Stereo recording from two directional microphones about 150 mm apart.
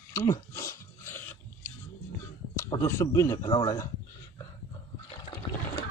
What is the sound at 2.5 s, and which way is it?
Speech, 20° left (ahead or behind).